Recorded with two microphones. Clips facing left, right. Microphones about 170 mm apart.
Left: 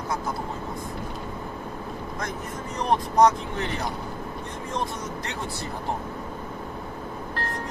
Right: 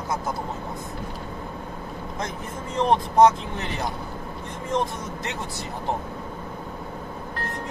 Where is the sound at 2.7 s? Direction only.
25° right (ahead or behind).